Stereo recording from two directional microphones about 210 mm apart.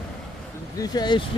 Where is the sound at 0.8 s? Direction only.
20° left (ahead or behind).